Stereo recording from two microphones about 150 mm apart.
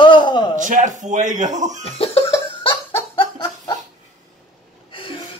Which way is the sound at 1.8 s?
40° left (ahead or behind).